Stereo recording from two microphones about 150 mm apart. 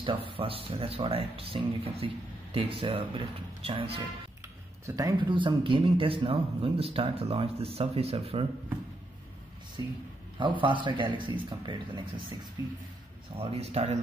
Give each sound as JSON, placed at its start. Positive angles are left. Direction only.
{"t": 0.0, "sound": "a man's voice", "side_deg": -35}
{"t": 4.8, "sound": "a man's voice", "side_deg": -20}
{"t": 9.8, "sound": "a man's voice", "side_deg": -25}
{"t": 13.4, "sound": "speech", "side_deg": -45}